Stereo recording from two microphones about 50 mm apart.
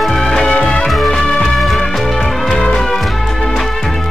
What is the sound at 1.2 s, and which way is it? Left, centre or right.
Music, centre.